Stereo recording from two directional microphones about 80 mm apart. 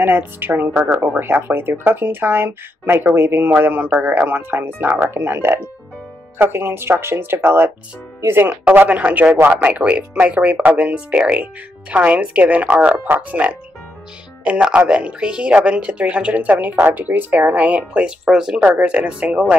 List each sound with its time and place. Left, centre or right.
0.0 s speech: right
8.5 s speech: centre